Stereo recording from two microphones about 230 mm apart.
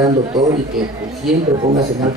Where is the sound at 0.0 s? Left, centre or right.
Centre.